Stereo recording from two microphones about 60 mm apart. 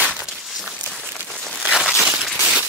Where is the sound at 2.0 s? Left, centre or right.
Centre.